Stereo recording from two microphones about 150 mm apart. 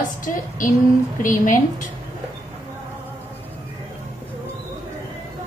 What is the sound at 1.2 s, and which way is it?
Speech, 60° left (ahead or behind).